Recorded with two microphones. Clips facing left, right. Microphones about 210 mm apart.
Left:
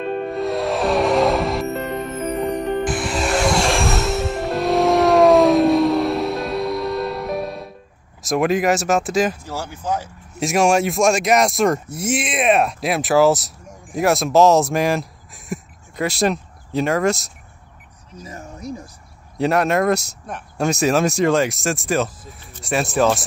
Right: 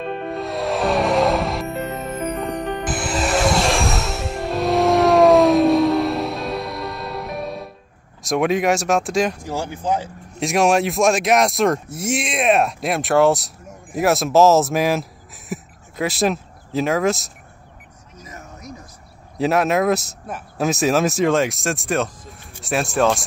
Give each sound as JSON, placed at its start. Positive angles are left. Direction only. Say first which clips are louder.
{"t": 0.3, "sound": "music", "louder": "left 1 dB", "side_deg": 0}
{"t": 2.8, "sound": "music", "louder": "left 2 dB", "side_deg": 0}
{"t": 8.2, "sound": "speech", "louder": "left 1 dB", "side_deg": 0}
{"t": 9.4, "sound": "speech", "louder": "right 3 dB", "side_deg": -15}
{"t": 10.4, "sound": "speech", "louder": "even", "side_deg": 0}
{"t": 18.2, "sound": "a sound", "louder": "left 5 dB", "side_deg": 30}
{"t": 19.3, "sound": "speech", "louder": "even", "side_deg": 0}